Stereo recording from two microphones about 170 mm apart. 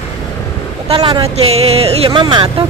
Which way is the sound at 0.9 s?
30° right (ahead or behind).